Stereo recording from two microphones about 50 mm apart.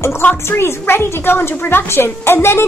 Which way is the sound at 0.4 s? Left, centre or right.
Left.